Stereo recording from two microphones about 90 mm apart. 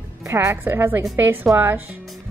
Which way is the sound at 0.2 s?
30° right (ahead or behind).